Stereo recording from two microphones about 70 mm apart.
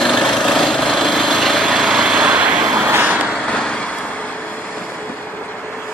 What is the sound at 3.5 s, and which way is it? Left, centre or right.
Vehicle, centre.